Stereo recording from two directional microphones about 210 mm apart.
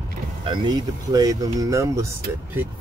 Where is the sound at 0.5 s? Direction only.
20° right (ahead or behind).